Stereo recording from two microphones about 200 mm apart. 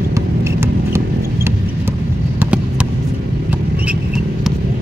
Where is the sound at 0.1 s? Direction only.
15° right (ahead or behind).